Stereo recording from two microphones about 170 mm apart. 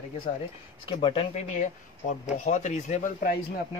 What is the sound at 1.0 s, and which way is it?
Speech, 35° left (ahead or behind).